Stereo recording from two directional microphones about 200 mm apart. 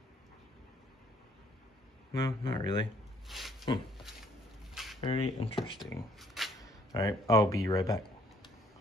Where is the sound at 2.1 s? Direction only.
20° left (ahead or behind).